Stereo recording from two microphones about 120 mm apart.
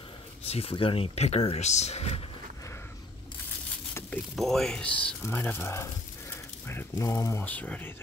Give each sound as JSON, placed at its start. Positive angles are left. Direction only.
{"t": 0.5, "sound": "speech", "side_deg": 55}
{"t": 4.4, "sound": "speech", "side_deg": 0}